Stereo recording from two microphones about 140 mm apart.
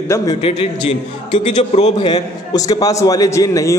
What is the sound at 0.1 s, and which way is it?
Speech, 25° left (ahead or behind).